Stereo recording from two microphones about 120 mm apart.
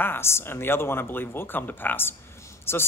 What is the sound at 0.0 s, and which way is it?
A man's voice, 20° left (ahead or behind).